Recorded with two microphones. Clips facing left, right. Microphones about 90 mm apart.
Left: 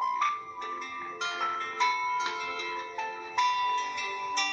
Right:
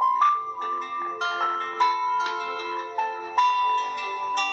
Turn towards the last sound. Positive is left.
turn(degrees=-45)  # may be behind; listen again after turning